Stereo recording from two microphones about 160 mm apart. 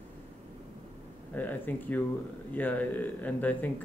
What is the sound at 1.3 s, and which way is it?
Speech, 10° left (ahead or behind).